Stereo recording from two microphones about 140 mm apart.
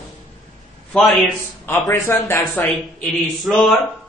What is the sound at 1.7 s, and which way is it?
Speech, 15° left (ahead or behind).